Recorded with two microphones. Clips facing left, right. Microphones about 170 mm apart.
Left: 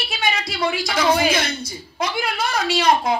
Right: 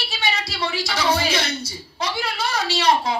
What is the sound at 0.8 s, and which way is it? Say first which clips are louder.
Speech: left 2 dB; 55° left (ahead or behind).